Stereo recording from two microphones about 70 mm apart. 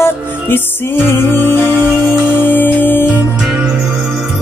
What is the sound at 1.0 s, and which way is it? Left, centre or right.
Music, left.